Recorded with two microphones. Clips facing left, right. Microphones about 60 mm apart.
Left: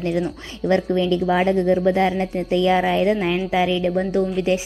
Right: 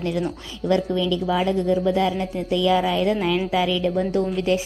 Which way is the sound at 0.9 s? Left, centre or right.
Left.